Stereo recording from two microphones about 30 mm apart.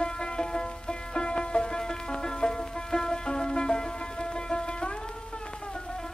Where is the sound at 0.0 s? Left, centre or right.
Left.